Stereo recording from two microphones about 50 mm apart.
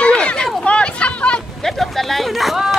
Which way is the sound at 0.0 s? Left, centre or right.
Left.